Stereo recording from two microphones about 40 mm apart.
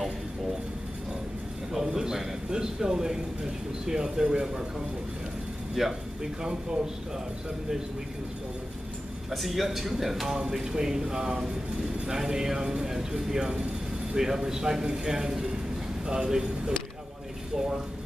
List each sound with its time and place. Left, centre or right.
1.9 s speech: centre
5.8 s speech: centre
6.4 s speech: right
9.3 s speech: centre